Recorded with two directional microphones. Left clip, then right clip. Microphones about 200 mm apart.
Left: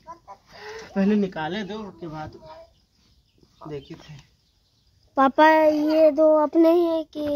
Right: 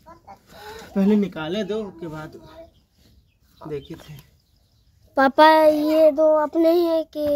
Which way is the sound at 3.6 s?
15° right (ahead or behind).